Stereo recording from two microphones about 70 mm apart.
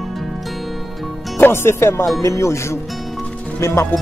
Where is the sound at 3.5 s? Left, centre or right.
Left.